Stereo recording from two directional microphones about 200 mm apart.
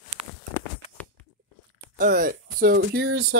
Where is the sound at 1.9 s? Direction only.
45° right (ahead or behind); by 3.2 s 65° right (ahead or behind).